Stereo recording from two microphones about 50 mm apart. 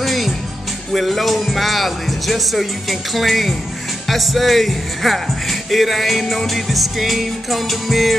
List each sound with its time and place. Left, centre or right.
0.0 s music: centre
0.9 s speech: centre